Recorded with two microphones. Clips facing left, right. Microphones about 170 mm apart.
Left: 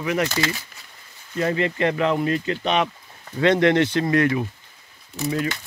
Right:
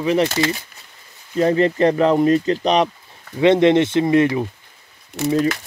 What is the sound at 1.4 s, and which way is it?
Speech, 35° right (ahead or behind).